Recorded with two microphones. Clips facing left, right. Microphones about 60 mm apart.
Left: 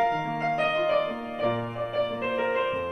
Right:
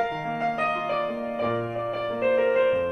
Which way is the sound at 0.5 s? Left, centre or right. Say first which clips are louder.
Left 2 dB; right.